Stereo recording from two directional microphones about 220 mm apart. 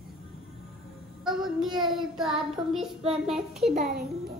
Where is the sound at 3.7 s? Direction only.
45° right (ahead or behind).